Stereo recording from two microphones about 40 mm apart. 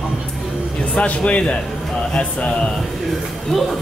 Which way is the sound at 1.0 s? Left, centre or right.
Left.